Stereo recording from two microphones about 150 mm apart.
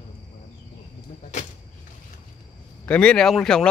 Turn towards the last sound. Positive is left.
turn(degrees=5)  # may be behind; listen again after turning